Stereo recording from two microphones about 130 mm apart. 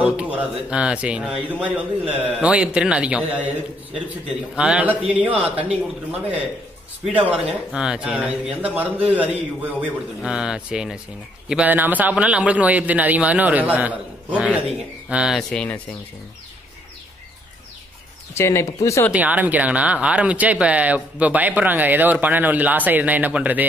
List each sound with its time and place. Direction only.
0.0 s speech: 10° right (ahead or behind)
4.6 s speech: 10° right (ahead or behind)
7.2 s speech: 5° right (ahead or behind)
15.5 s speech: 10° left (ahead or behind)
18.3 s speech: 20° left (ahead or behind)
19.1 s speech: 10° right (ahead or behind)